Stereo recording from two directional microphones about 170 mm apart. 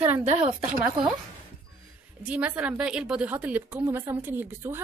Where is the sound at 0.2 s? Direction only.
40° right (ahead or behind).